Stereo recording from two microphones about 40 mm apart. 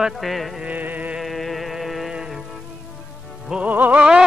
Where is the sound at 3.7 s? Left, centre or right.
Right.